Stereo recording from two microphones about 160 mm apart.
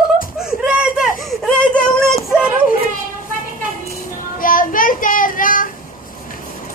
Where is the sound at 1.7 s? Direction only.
5° left (ahead or behind).